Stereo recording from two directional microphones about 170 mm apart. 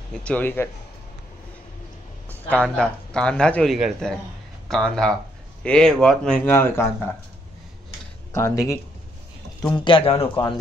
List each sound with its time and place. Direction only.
0.1 s speech: 5° left (ahead or behind)
2.2 s speech: 10° left (ahead or behind)
8.3 s speech: 15° left (ahead or behind)
9.8 s a man's voice: 30° left (ahead or behind)